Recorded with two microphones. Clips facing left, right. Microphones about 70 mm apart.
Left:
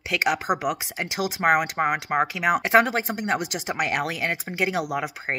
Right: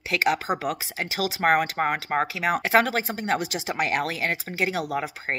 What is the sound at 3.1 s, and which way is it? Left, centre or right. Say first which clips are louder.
Speech: even; left.